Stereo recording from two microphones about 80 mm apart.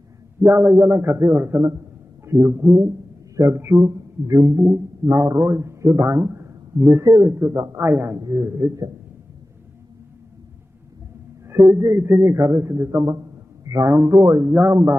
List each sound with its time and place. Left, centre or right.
0.4 s a man's voice: right
11.4 s a man's voice: right
13.7 s speech: right
13.9 s a man's voice: right
14.7 s a man's voice: right